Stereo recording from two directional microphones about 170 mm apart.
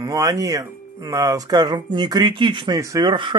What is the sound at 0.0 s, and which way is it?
Speech, 20° right (ahead or behind).